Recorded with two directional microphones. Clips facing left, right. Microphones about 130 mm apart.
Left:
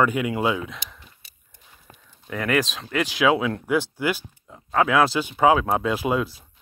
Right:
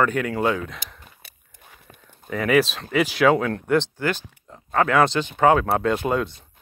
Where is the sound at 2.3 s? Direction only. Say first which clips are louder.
Right 4 dB; centre (ahead or behind).